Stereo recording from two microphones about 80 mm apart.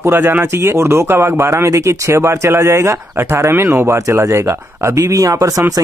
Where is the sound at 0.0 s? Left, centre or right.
Right.